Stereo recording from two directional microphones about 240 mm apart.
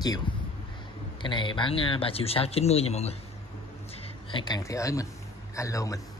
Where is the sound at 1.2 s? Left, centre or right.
Centre.